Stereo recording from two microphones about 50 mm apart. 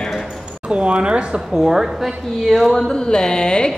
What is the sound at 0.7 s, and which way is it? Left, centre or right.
Speech, right.